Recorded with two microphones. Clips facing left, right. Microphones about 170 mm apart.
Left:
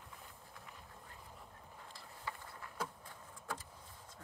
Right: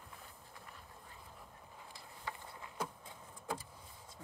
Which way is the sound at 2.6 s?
15° right (ahead or behind).